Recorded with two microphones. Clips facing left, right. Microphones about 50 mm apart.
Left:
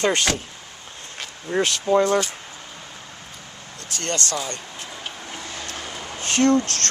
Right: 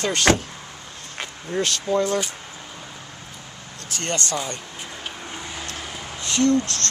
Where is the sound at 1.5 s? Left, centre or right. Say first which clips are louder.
Left 3 dB; left.